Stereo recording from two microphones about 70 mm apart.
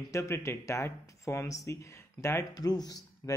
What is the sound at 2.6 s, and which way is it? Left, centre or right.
Speech, left.